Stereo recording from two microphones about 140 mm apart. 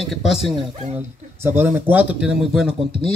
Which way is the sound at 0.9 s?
15° right (ahead or behind).